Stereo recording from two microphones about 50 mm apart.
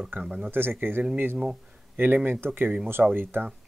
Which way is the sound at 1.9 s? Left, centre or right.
Right.